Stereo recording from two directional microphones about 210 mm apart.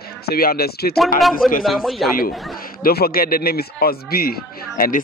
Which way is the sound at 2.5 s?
45° left (ahead or behind).